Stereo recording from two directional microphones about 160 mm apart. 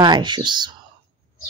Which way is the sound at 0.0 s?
25° right (ahead or behind).